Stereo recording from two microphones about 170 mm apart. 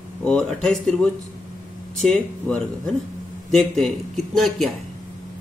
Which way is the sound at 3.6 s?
Centre (ahead or behind).